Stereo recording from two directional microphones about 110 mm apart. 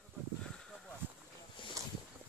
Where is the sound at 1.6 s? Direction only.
50° left (ahead or behind).